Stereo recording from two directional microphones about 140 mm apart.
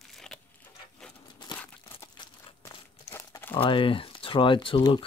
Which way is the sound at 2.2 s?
40° left (ahead or behind).